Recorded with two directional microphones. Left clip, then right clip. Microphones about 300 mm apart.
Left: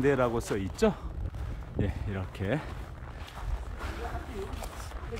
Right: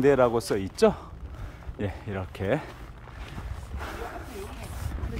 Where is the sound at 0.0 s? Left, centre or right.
Centre.